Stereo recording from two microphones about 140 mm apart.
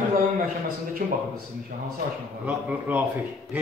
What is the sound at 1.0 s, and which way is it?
Speech, 70° right (ahead or behind).